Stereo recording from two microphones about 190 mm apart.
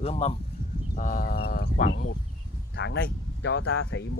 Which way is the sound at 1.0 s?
45° left (ahead or behind).